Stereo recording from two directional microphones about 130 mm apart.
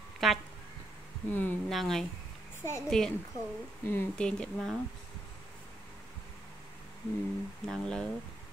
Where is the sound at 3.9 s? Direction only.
15° left (ahead or behind).